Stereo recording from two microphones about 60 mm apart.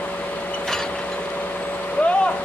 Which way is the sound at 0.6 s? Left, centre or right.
Centre.